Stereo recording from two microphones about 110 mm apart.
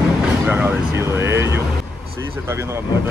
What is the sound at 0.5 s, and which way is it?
Speech, 20° right (ahead or behind).